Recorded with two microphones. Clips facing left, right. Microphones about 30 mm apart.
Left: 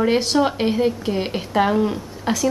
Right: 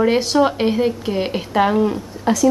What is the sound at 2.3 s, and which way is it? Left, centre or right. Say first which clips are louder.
Speech: right 4 dB; centre.